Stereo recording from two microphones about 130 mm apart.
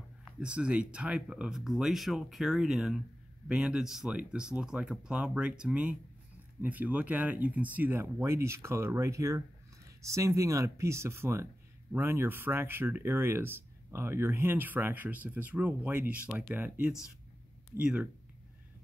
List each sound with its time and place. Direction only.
0.4 s speech: 10° right (ahead or behind)